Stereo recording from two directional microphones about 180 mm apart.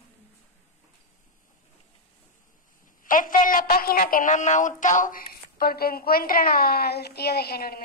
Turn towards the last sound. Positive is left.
turn(degrees=60)  # may be behind; listen again after turning